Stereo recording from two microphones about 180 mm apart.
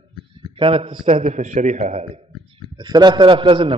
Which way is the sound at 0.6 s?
30° right (ahead or behind).